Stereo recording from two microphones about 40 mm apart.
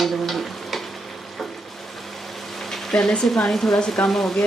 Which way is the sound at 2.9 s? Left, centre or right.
Centre.